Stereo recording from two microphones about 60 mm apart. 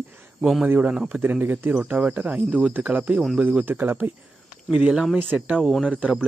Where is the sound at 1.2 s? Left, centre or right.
Right.